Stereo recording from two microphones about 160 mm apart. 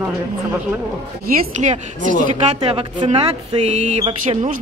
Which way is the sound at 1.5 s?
50° right (ahead or behind).